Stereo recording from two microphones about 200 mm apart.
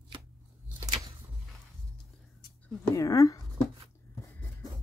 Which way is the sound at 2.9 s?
15° left (ahead or behind).